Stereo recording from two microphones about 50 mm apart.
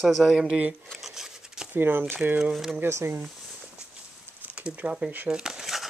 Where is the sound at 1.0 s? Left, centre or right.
Centre.